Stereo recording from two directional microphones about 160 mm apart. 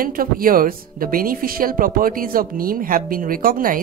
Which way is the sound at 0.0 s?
60° right (ahead or behind).